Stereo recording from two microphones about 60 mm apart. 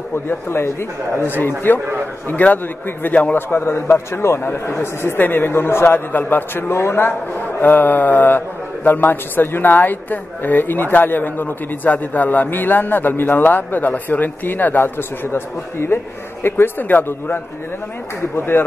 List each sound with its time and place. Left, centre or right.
0.1 s a man's voice: left
3.3 s a man's voice: left
4.4 s a man's voice: left
6.7 s a man's voice: left